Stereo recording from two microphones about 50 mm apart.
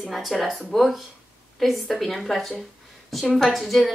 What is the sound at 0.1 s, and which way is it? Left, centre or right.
A woman's voice, centre.